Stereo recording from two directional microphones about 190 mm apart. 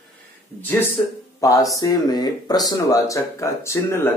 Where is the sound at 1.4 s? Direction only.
15° left (ahead or behind).